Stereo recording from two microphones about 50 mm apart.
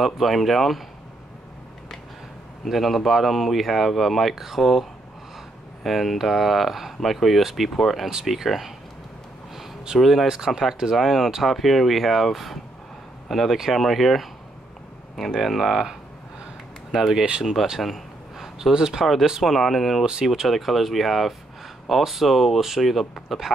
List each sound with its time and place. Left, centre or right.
0.0 s speech: centre
2.6 s speech: centre
5.9 s speech: centre
8.1 s speech: centre
9.9 s speech: centre
10.2 s speech: centre
15.3 s speech: centre
17.7 s a sound: centre
19.0 s speech: centre